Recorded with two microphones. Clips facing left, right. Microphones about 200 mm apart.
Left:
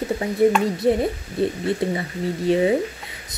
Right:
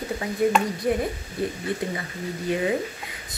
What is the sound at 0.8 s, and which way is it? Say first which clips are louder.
Speech: left 7 dB; 25° left (ahead or behind).